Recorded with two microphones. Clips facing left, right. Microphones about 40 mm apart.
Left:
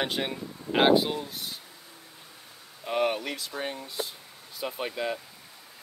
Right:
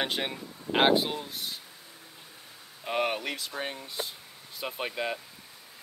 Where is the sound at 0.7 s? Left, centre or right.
Right.